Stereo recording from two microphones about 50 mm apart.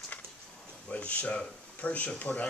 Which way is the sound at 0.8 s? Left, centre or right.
Left.